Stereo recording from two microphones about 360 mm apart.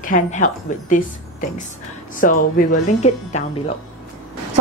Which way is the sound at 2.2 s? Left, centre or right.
Left.